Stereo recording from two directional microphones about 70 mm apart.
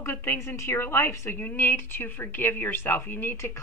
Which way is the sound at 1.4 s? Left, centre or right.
Left.